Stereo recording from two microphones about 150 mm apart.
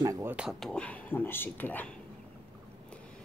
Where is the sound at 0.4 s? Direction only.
Centre (ahead or behind).